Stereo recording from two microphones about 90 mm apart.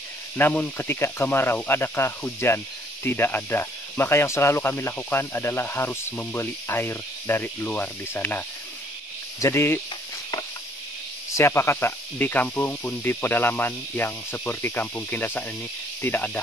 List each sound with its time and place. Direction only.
0.4 s speech: 20° left (ahead or behind)
11.3 s speech: 30° left (ahead or behind)